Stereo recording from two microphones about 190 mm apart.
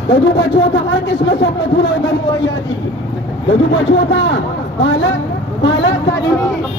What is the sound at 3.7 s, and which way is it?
A man's voice, 65° left (ahead or behind).